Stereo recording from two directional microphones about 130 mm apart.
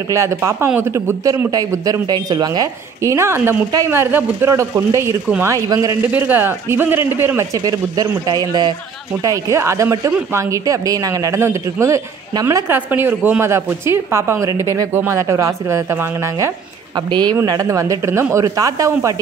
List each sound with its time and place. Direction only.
0.1 s a woman's voice: 20° right (ahead or behind)
6.1 s speech: 15° right (ahead or behind)
7.5 s a woman's voice: 30° right (ahead or behind)
16.9 s a woman's voice: 35° right (ahead or behind)